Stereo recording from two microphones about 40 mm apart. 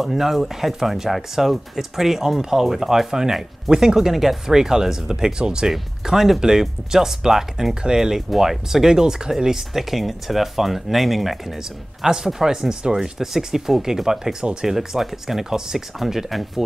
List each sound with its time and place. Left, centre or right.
0.0 s speech: centre; by 5.7 s right
5.7 s speech: centre
14.4 s speech: right
14.7 s speech: centre